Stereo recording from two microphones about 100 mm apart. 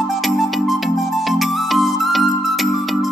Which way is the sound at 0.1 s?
Centre (ahead or behind).